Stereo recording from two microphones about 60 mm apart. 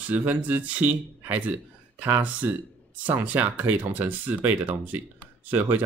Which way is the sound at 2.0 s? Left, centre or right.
Right.